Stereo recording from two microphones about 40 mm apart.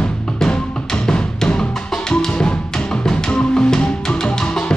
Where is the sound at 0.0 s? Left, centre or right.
Left.